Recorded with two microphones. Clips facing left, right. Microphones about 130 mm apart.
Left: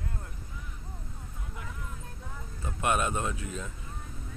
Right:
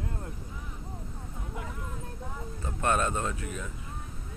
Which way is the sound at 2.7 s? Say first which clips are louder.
Right 1 dB; 15° left (ahead or behind).